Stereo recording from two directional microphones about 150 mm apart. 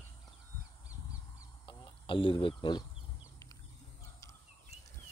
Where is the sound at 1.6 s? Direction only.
35° left (ahead or behind).